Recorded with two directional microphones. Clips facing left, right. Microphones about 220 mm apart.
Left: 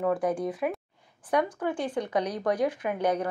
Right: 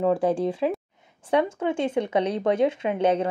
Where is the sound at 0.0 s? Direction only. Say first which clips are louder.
Right 5 dB; 25° right (ahead or behind).